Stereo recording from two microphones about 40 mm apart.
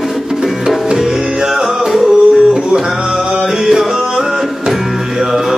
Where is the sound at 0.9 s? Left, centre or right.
Centre.